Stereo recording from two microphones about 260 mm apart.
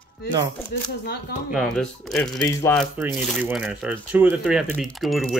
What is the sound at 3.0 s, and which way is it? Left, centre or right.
Speech, centre.